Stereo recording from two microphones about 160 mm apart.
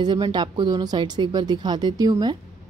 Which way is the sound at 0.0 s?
25° right (ahead or behind).